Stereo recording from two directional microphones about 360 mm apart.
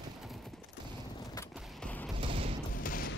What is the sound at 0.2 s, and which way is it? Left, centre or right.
Clip-clop, centre.